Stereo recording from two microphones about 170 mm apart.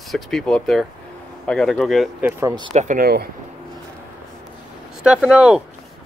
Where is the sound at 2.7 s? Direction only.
45° right (ahead or behind).